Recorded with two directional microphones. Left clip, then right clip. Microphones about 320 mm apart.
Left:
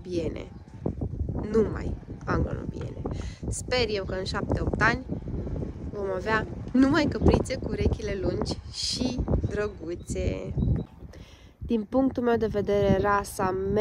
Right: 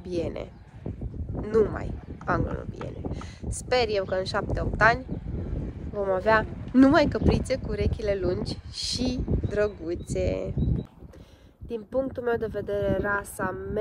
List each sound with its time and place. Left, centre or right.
0.0 s speech: centre
0.8 s speech: left
1.4 s speech: centre
11.7 s speech: centre